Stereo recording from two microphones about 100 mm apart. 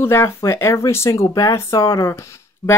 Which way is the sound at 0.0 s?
25° left (ahead or behind).